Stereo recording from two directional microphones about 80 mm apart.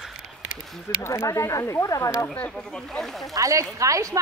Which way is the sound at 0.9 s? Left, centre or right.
Left.